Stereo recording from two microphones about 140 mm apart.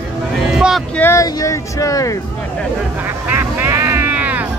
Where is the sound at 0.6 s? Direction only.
5° right (ahead or behind).